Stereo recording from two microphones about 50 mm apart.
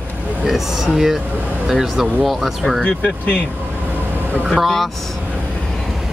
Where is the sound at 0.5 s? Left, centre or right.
Centre.